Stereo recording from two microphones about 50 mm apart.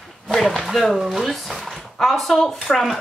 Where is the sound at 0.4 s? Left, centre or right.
Centre.